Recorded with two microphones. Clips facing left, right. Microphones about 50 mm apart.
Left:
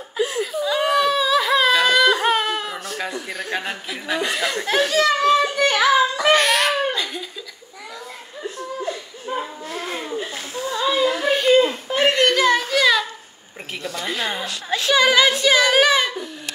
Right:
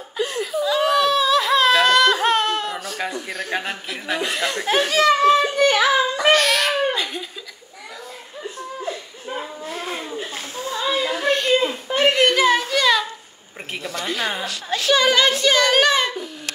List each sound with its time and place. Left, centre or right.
0.2 s whimper: centre
4.8 s a child's voice: right
6.3 s baby cry: left
6.9 s laughter: centre
8.8 s chuckle: centre
10.7 s whimper: centre
12.3 s a sound: centre
13.9 s a child's voice: centre